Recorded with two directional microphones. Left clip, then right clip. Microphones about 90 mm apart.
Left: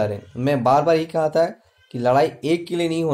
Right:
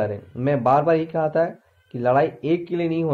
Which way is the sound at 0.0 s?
25° left (ahead or behind).